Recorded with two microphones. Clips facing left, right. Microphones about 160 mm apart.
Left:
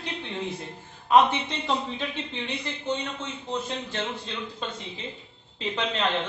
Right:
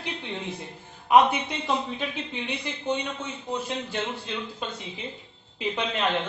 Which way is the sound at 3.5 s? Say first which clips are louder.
Right 1 dB; 10° right (ahead or behind).